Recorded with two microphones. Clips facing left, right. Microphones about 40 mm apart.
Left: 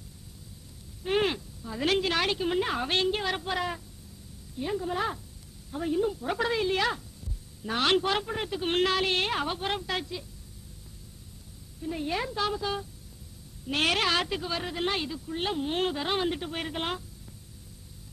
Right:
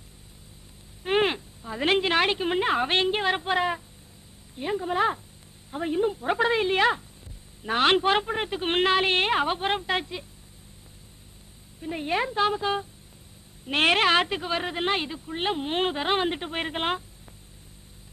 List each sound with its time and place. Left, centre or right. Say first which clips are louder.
1.0 s a woman's voice: right 3 dB; right
11.8 s a woman's voice: right 4 dB; right